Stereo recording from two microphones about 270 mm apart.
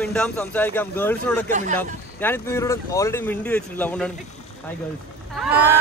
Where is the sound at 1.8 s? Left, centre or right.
Centre.